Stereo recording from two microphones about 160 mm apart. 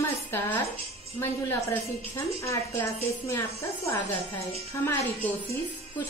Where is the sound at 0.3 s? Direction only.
15° left (ahead or behind).